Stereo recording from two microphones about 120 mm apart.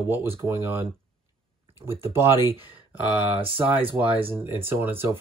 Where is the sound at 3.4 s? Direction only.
50° right (ahead or behind).